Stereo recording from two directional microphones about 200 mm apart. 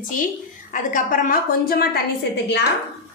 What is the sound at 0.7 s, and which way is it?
A woman's voice, 40° left (ahead or behind).